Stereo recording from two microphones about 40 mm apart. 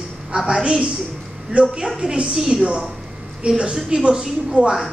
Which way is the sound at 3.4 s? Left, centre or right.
Right.